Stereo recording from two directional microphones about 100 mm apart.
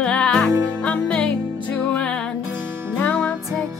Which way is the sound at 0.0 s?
10° left (ahead or behind).